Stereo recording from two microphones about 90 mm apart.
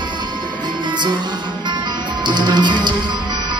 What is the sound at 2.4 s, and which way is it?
Music, 55° right (ahead or behind).